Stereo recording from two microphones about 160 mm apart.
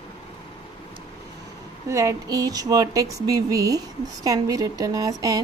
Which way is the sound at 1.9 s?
20° right (ahead or behind).